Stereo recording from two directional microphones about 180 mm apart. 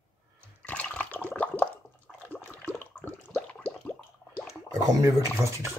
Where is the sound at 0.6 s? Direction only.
5° left (ahead or behind).